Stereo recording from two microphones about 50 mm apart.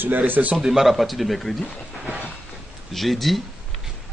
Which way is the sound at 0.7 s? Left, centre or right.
Centre.